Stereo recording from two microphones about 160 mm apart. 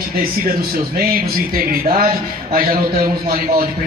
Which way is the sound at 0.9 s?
70° right (ahead or behind).